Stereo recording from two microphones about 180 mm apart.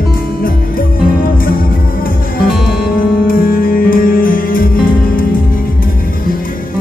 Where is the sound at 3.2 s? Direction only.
50° left (ahead or behind).